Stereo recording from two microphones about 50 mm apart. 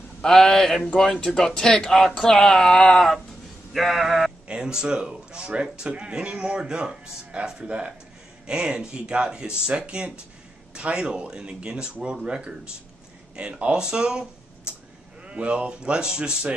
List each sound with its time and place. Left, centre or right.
0.2 s speech: centre
3.7 s a sound: centre
4.5 s speech: centre
15.2 s speech: right